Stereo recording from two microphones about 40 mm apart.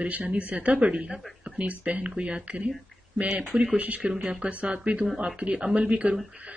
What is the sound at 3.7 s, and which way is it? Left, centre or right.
Speech, right.